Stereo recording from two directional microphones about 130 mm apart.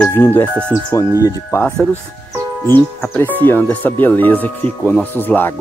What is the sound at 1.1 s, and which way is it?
Speech, 25° left (ahead or behind).